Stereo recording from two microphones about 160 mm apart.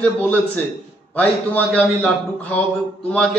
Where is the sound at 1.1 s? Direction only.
10° left (ahead or behind).